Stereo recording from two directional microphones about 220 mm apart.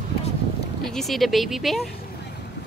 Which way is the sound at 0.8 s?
Centre (ahead or behind).